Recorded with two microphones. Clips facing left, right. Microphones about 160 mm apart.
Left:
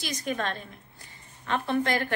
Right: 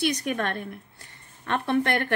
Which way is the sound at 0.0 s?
65° right (ahead or behind).